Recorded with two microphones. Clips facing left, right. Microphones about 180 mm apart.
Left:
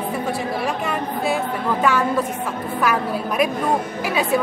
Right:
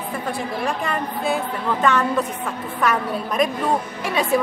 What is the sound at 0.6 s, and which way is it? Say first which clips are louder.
A woman's voice: left 1 dB; 5° left (ahead or behind).